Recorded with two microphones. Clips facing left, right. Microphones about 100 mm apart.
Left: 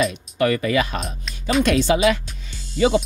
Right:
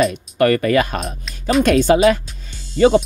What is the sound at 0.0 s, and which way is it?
Speech, 50° right (ahead or behind).